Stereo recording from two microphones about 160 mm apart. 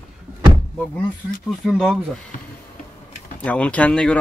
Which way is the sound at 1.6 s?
5° left (ahead or behind).